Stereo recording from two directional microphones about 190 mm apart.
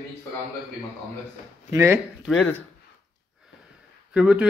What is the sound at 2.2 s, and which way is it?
Speech, centre (ahead or behind).